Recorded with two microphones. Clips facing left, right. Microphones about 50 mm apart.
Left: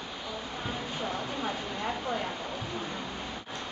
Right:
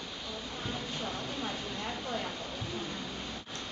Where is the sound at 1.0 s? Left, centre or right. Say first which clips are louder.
Left 6 dB; centre.